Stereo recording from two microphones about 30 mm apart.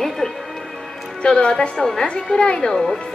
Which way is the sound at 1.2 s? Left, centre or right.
Left.